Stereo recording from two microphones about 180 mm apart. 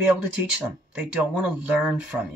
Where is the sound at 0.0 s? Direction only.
5° right (ahead or behind).